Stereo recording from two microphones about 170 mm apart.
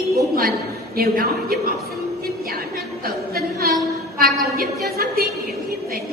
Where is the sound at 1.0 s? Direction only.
60° right (ahead or behind).